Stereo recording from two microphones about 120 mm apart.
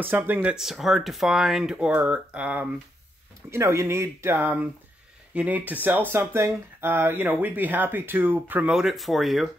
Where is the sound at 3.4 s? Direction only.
25° right (ahead or behind).